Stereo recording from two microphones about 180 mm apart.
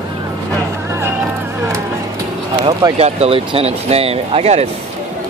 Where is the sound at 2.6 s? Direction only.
30° right (ahead or behind).